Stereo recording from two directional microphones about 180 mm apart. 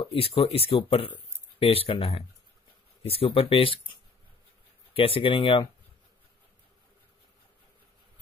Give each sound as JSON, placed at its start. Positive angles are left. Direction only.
{"t": 0.0, "sound": "speech", "side_deg": 30}
{"t": 4.9, "sound": "speech", "side_deg": 30}